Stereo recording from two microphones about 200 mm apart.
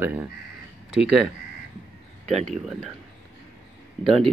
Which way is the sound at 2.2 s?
35° right (ahead or behind).